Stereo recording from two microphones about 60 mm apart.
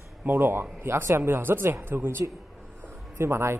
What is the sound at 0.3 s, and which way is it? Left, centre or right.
A man's voice, right.